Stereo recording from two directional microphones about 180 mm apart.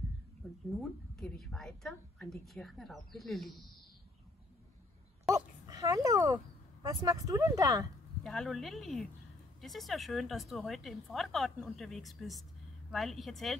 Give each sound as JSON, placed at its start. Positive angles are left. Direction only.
{"t": 0.7, "sound": "a woman's voice", "side_deg": 0}
{"t": 5.3, "sound": "speech", "side_deg": -20}
{"t": 8.2, "sound": "a woman's voice", "side_deg": 0}